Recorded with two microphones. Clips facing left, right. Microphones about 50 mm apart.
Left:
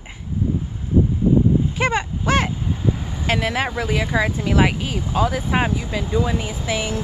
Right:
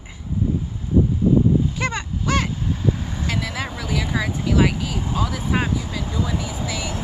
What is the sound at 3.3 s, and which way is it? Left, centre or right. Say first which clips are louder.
Speech: left 7 dB; left.